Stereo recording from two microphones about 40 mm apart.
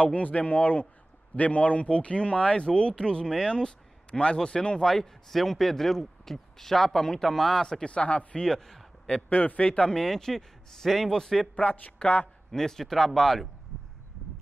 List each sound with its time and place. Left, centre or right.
0.0 s speech: left
4.9 s a man's voice: centre
7.8 s speech: left
8.4 s a man's voice: centre
9.3 s a man's voice: left
9.6 s speech: left
10.0 s a man's voice: centre
12.0 s speech: left
12.4 s a man's voice: centre